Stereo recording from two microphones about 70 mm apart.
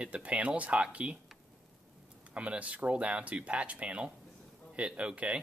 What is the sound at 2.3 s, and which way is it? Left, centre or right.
A man's voice, centre.